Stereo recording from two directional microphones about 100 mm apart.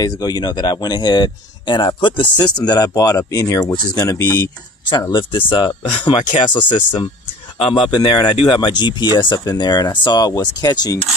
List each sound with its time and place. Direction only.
0.0 s speech: 40° left (ahead or behind)
2.6 s speech: 40° left (ahead or behind)
5.1 s speech: 55° left (ahead or behind)